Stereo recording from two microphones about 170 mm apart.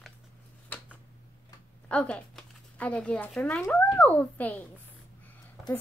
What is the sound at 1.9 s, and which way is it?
Speech, 5° left (ahead or behind).